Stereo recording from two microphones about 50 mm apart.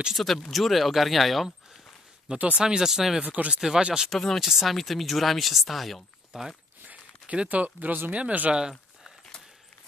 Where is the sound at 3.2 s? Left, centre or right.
Right.